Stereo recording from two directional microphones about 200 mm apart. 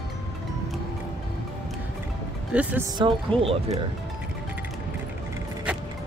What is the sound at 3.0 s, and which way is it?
Speech, 25° right (ahead or behind).